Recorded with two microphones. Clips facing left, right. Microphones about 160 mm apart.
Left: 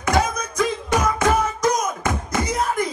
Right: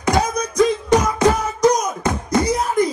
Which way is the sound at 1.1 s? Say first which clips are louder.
Right 2 dB; 15° right (ahead or behind).